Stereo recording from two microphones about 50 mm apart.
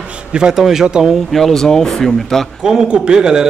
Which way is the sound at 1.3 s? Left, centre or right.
Centre.